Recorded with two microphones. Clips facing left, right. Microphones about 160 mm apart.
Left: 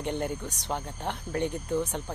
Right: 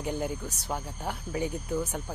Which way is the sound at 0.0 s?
5° right (ahead or behind).